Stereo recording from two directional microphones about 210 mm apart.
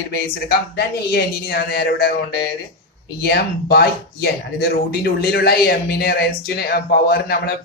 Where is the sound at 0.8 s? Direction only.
50° left (ahead or behind).